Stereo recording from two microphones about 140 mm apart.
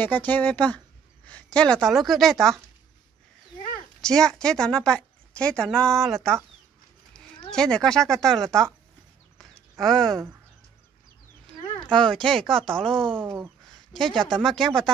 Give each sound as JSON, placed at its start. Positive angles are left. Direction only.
{"t": 0.0, "sound": "a woman's voice", "side_deg": 15}
{"t": 4.0, "sound": "a woman's voice", "side_deg": 5}
{"t": 9.4, "sound": "a sound", "side_deg": 0}
{"t": 11.8, "sound": "a woman's voice", "side_deg": 5}
{"t": 13.2, "sound": "speech", "side_deg": -15}
{"t": 13.9, "sound": "a woman's voice", "side_deg": 5}